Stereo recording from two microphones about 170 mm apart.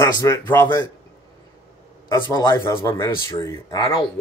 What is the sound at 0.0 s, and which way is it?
Speech, 15° left (ahead or behind).